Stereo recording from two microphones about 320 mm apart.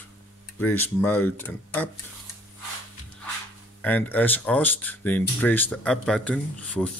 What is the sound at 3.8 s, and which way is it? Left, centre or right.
Speech, centre.